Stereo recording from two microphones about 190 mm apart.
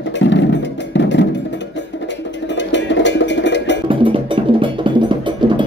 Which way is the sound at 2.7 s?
70° left (ahead or behind).